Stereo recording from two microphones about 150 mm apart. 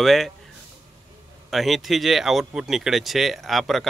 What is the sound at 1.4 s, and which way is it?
A man's voice, centre (ahead or behind).